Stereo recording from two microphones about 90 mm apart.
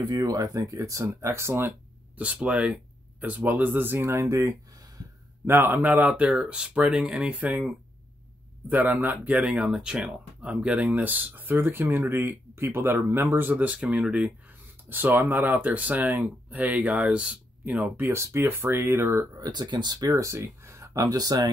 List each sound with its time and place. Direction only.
0.1 s speech: 40° right (ahead or behind)
2.1 s speech: 15° right (ahead or behind); by 5.0 s 35° right (ahead or behind)
5.5 s speech: 25° right (ahead or behind)
14.9 s speech: 20° right (ahead or behind)
19.5 s speech: 55° right (ahead or behind)
20.1 s speech: 35° right (ahead or behind)